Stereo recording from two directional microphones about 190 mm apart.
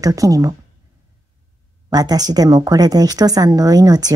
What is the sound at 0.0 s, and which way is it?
Speech, 20° right (ahead or behind).